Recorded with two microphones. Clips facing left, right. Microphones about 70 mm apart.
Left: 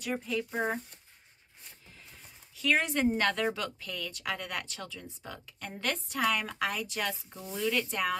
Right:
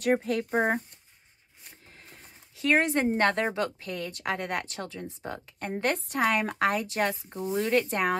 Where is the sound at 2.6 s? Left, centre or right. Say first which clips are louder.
Right 4 dB; right.